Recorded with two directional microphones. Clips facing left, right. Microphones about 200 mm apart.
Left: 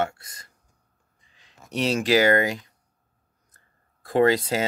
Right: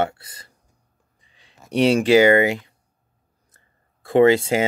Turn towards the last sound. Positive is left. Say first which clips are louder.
# right 5 dB
turn(degrees=-25)  # may be behind; listen again after turning